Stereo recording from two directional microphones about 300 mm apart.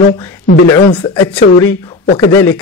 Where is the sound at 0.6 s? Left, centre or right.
Centre.